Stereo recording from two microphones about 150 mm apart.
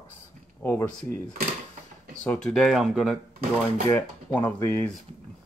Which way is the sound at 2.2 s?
5° left (ahead or behind).